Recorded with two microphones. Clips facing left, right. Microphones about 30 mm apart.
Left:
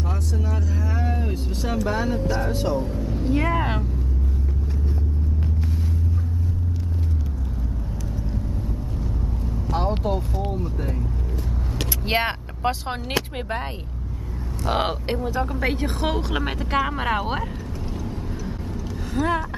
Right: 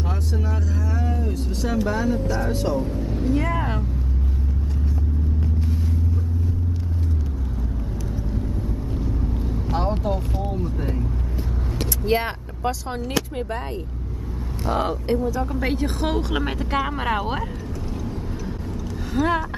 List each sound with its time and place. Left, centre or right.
0.3 s vehicle: centre
0.8 s vehicle: left
1.5 s speech: centre
3.0 s speech: centre
3.3 s speech: left
9.7 s vehicle: centre
10.5 s speech: centre
12.2 s speech: left
14.7 s speech: left
15.4 s speech: centre
19.1 s speech: centre